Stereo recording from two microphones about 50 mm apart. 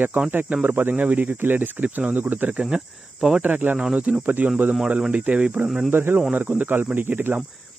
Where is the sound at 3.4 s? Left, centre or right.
Right.